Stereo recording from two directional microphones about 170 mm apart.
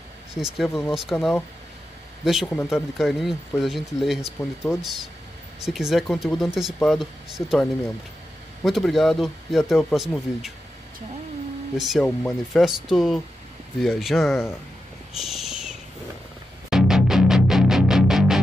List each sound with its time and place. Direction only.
0.3 s speech: centre (ahead or behind)
8.6 s speech: centre (ahead or behind)
11.7 s speech: centre (ahead or behind)
14.3 s speech: 15° left (ahead or behind)
15.1 s a sound: centre (ahead or behind)
16.7 s music: 5° right (ahead or behind)